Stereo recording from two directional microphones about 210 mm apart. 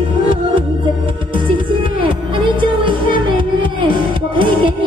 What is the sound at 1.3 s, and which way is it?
Music, 25° right (ahead or behind).